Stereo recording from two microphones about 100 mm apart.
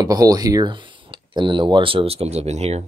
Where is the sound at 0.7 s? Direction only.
55° right (ahead or behind); by 2.9 s 90° right.